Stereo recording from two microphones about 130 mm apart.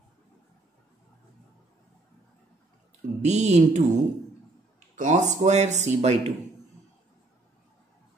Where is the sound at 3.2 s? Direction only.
60° right (ahead or behind).